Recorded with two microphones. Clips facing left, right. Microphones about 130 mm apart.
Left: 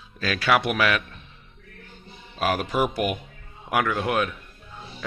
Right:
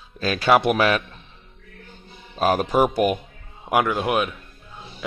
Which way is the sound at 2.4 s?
35° right (ahead or behind).